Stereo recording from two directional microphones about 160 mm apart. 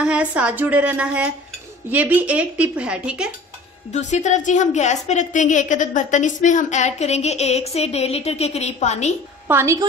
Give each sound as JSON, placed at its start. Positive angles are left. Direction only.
{"t": 0.0, "sound": "a woman's voice", "side_deg": -10}
{"t": 3.9, "sound": "a woman's voice", "side_deg": 45}
{"t": 9.5, "sound": "a woman's voice", "side_deg": -15}